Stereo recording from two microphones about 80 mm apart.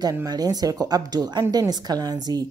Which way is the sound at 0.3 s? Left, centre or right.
Right.